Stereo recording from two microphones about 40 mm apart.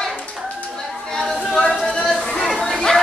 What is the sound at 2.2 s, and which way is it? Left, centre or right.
Chatter, centre.